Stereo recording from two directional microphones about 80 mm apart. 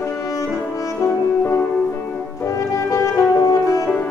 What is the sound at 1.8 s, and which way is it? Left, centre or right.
Music, left.